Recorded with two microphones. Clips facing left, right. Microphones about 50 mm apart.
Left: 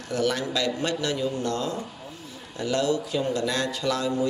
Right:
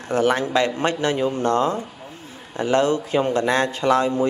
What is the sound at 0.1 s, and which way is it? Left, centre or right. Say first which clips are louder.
A man's voice: right 7 dB; right.